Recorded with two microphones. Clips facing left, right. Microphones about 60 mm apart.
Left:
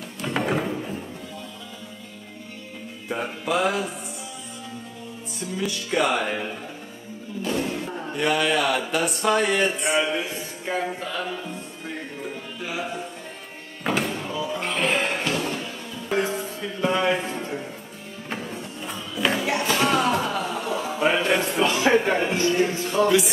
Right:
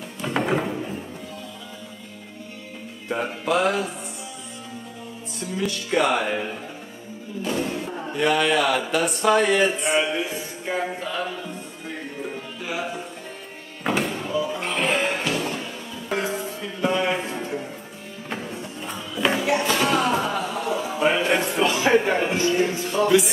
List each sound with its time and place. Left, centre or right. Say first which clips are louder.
0.2 s music: right 1 dB; centre
3.1 s speech: right 2 dB; centre
5.4 s speech: right 1 dB; centre
13.8 s a sound: right 1 dB; centre
14.5 s music: even; centre
16.3 s music: even; centre
21.5 s a sound: even; centre
21.7 s a man's voice: right 1 dB; centre
22.6 s speech: even; right
22.9 s speech: right 1 dB; centre